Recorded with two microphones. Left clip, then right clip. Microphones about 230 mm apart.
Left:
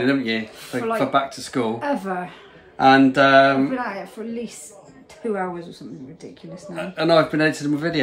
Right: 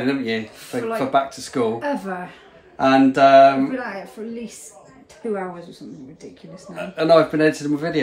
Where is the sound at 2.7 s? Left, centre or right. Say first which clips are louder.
Left 1 dB; centre.